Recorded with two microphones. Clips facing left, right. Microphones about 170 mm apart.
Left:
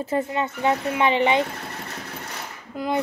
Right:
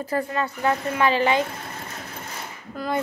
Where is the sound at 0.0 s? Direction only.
25° left (ahead or behind).